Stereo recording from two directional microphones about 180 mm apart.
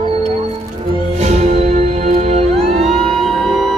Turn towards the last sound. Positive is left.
turn(degrees=0)  # may be behind; listen again after turning